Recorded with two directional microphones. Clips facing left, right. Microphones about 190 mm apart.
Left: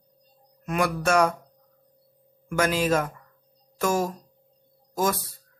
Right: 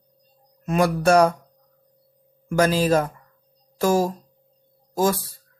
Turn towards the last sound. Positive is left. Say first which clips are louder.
# right 4 dB
turn(degrees=-30)  # may be behind; listen again after turning